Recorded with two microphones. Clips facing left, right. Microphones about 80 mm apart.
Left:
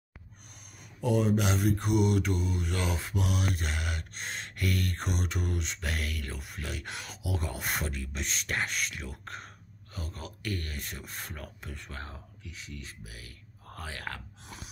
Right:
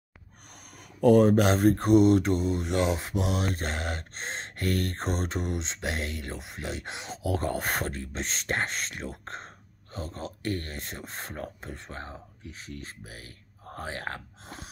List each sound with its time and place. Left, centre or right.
1.0 s mantra: right
7.2 s speech: right
9.9 s mantra: right
12.5 s speech: right